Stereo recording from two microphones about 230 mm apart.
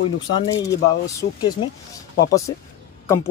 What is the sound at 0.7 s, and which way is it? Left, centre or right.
Speech, centre.